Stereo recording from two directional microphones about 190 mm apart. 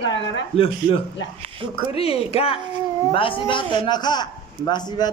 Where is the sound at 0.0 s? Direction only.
70° left (ahead or behind).